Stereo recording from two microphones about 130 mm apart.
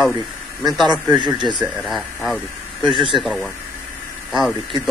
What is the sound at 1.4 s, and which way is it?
Speech, 35° right (ahead or behind).